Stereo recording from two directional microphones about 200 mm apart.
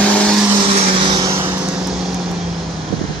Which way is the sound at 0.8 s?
25° right (ahead or behind).